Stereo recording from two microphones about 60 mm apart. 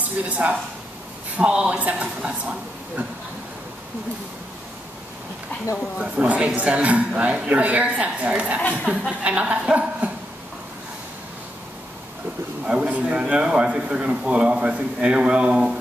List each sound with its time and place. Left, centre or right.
0.0 s speech: right
5.9 s a woman's voice: right
12.6 s a man's voice: centre